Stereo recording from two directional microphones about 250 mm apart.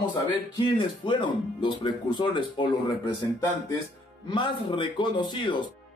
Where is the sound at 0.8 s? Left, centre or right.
Centre.